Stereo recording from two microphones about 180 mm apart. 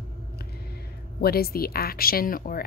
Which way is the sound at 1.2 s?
60° left (ahead or behind).